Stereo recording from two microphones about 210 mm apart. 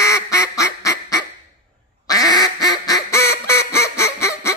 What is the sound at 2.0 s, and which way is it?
Quack, 15° left (ahead or behind).